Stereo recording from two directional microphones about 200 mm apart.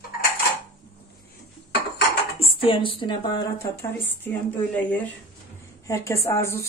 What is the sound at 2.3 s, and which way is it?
Speech, 25° left (ahead or behind).